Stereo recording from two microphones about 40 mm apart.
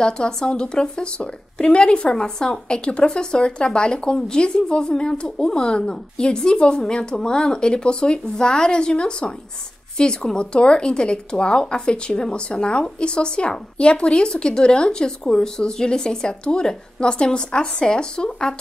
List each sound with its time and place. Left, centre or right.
0.0 s a woman's voice: left